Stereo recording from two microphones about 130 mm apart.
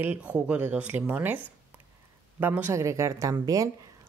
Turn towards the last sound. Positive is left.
turn(degrees=-25)  # may be behind; listen again after turning